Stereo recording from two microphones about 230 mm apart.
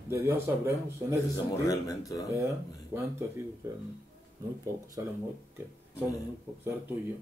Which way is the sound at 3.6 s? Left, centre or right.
Centre.